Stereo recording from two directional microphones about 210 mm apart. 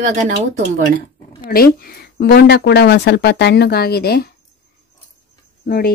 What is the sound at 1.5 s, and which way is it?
Speech, 45° left (ahead or behind).